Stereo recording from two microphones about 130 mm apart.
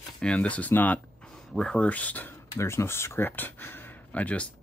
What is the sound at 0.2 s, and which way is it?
Speech, 10° left (ahead or behind).